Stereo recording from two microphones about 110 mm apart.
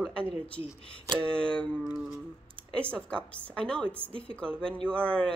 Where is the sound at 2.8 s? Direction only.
10° left (ahead or behind).